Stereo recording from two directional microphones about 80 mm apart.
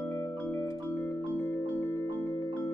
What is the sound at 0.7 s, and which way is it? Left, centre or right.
Music, left.